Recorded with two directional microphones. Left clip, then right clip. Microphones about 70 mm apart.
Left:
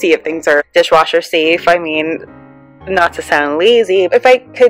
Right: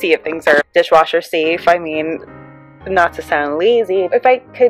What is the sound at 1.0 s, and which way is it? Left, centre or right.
Speech, right.